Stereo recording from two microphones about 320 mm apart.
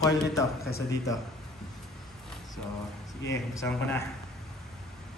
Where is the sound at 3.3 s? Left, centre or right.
Centre.